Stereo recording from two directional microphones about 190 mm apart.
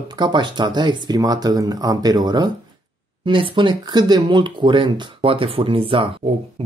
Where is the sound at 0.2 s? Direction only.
25° right (ahead or behind).